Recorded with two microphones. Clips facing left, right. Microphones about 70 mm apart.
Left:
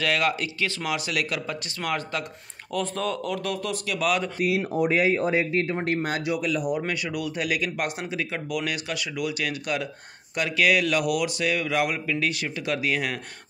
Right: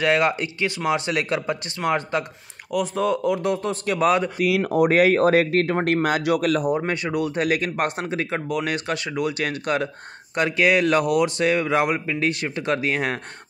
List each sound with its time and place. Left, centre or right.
0.0 s a man's voice: right
2.7 s a man's voice: centre; by 4.3 s right
4.5 s speech: right
6.9 s speech: right